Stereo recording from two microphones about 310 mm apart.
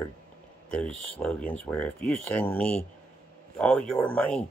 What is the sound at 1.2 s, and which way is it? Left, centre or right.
Speech, centre.